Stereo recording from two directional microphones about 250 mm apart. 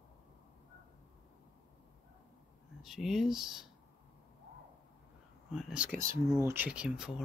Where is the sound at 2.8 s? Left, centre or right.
Centre.